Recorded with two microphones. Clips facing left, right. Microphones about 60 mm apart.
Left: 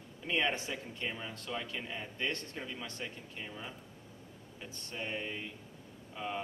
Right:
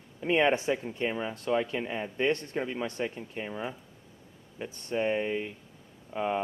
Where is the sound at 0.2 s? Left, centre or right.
Right.